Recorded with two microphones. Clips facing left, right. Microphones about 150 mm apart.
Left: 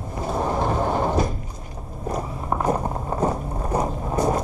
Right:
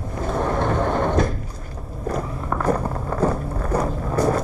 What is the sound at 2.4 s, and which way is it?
Vehicle, 20° left (ahead or behind).